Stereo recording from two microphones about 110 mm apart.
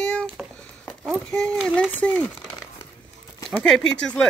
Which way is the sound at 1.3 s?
10° left (ahead or behind).